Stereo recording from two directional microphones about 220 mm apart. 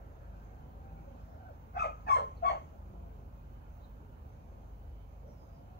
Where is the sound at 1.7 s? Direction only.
45° left (ahead or behind).